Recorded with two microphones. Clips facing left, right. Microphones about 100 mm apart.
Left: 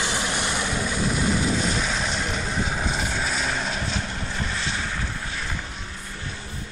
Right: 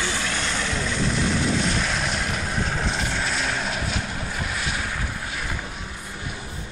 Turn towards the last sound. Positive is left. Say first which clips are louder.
# right 1 dB
turn(degrees=-5)  # may be behind; listen again after turning